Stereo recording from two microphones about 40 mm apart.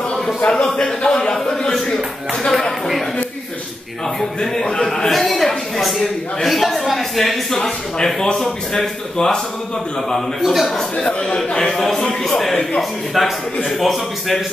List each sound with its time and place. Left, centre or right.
0.5 s speech: centre
2.5 s a man's voice: centre
4.4 s a man's voice: centre
10.4 s a man's voice: centre
11.2 s speech: centre
13.7 s a man's voice: centre